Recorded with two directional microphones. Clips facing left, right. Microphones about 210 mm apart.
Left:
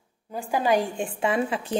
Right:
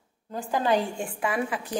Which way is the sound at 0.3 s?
10° left (ahead or behind).